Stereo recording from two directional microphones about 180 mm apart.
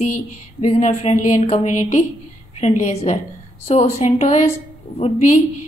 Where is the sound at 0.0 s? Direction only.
40° left (ahead or behind).